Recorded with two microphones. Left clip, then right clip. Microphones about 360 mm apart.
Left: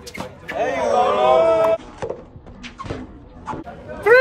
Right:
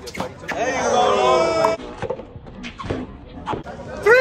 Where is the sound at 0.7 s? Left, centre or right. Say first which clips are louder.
Even; centre.